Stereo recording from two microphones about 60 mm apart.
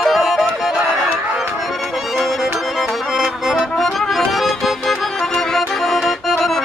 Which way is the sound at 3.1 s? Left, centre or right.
Centre.